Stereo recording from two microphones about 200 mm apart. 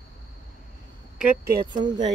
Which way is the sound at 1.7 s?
20° right (ahead or behind).